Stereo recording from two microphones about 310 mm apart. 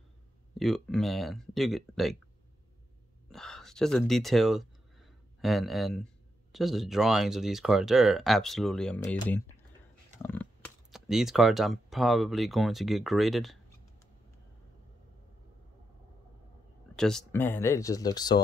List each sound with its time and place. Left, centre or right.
0.6 s speech: centre
3.3 s speech: centre
16.9 s speech: centre